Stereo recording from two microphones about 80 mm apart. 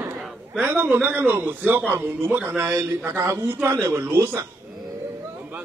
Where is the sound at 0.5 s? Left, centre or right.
Right.